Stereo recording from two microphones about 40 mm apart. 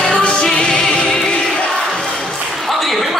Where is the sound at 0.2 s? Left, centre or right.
Left.